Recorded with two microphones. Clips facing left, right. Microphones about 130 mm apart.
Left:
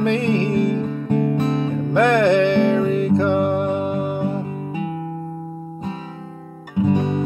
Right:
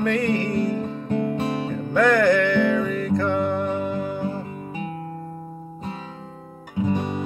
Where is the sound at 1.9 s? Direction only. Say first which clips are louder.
Left 2 dB; 20° left (ahead or behind).